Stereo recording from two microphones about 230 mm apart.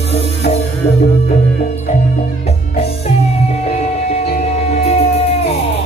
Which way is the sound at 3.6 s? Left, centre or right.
Left.